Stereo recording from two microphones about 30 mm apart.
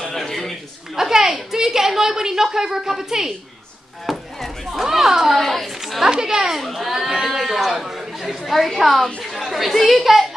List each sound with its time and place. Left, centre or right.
0.1 s a sound: centre
1.1 s a woman's voice: centre
4.0 s speech: centre
4.8 s a woman's voice: centre
5.3 s a woman's voice: centre
5.8 s a sound: centre
6.0 s a woman's voice: right
6.6 s a woman's voice: centre
8.3 s a woman's voice: centre
9.2 s chatter: centre
9.9 s a woman's voice: centre